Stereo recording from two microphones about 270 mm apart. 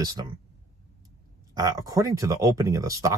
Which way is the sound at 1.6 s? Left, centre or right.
Centre.